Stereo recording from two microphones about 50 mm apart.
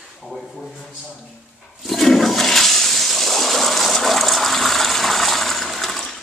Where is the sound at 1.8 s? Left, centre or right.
Centre.